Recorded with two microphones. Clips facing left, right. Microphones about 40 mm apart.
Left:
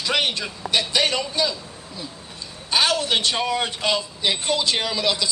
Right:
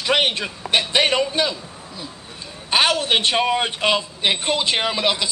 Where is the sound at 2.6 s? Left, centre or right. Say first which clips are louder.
Right 3 dB; right.